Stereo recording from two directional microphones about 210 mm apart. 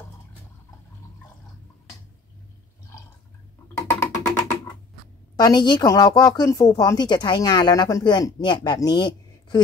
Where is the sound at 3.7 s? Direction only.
15° left (ahead or behind).